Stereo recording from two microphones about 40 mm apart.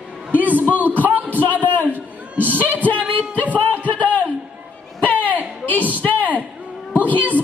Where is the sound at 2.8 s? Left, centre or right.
Left.